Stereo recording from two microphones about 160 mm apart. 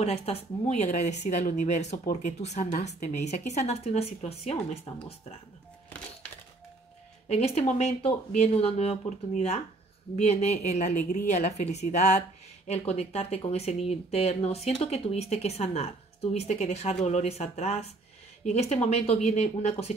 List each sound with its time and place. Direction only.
0.0 s speech: 40° left (ahead or behind)
7.2 s speech: 40° left (ahead or behind)